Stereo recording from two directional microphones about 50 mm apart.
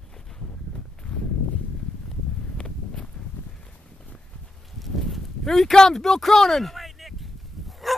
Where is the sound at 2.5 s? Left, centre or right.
Centre.